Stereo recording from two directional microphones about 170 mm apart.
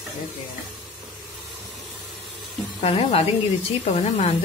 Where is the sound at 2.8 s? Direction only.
35° left (ahead or behind).